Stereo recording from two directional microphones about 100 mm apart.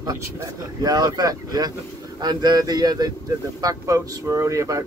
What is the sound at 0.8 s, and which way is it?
Speech, 40° right (ahead or behind).